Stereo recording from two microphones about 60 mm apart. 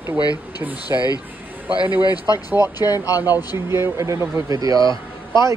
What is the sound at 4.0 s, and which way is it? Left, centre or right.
Speech, right.